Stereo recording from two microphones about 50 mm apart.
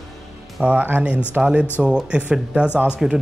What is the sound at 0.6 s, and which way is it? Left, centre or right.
Speech, right.